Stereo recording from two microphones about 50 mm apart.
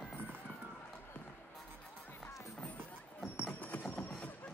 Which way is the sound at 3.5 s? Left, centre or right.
Left.